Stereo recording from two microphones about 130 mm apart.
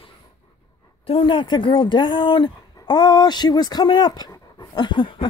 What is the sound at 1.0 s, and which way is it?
Speech, 45° left (ahead or behind).